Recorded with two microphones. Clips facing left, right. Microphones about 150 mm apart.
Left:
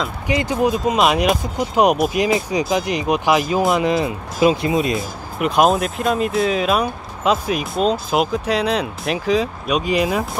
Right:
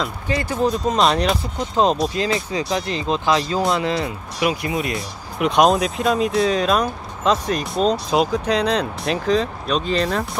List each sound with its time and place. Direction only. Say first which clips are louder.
0.3 s speech: left 3 dB; 20° left (ahead or behind)
5.4 s speech: even; 5° left (ahead or behind)